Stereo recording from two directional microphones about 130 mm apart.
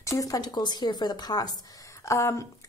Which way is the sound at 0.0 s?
25° left (ahead or behind).